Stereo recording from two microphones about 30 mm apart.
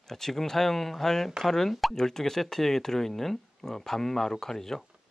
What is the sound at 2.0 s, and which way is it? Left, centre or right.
Speech, centre.